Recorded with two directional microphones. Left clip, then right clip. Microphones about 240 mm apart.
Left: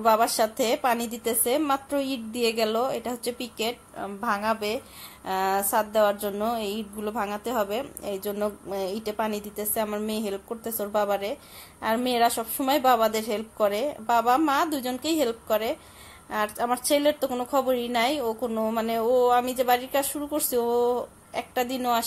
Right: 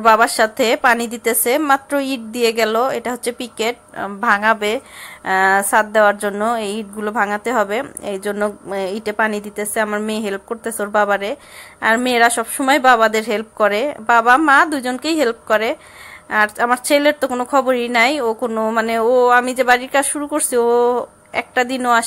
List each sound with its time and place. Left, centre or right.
0.0 s a woman's voice: right